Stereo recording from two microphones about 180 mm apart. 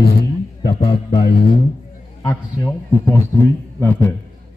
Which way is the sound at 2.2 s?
10° left (ahead or behind).